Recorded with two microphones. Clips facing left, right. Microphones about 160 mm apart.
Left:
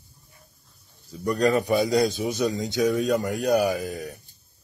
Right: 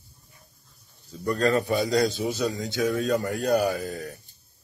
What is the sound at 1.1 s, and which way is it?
A man's voice, 15° left (ahead or behind).